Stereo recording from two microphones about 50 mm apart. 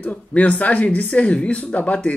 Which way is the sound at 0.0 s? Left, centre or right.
Left.